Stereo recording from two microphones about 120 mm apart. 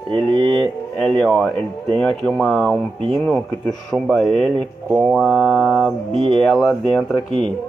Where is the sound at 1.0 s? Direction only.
5° left (ahead or behind).